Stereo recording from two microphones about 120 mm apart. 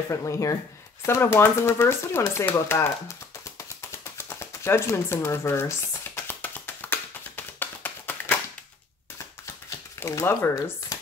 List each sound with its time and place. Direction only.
0.1 s speech: 25° left (ahead or behind)
3.4 s a sound: 25° left (ahead or behind)
6.1 s tap: 20° left (ahead or behind)
9.9 s speech: 20° left (ahead or behind)